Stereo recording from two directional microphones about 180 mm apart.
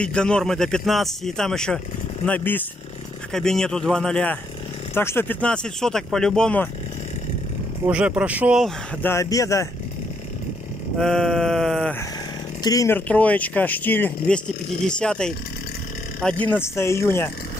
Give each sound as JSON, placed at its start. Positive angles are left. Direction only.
{"t": 0.0, "sound": "speech", "side_deg": 5}
{"t": 7.8, "sound": "speech", "side_deg": -5}
{"t": 9.0, "sound": "speech", "side_deg": 15}
{"t": 11.0, "sound": "speech", "side_deg": 0}
{"t": 12.6, "sound": "speech", "side_deg": 15}